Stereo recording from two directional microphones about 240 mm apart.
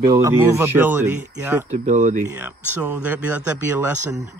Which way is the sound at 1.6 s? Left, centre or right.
Right.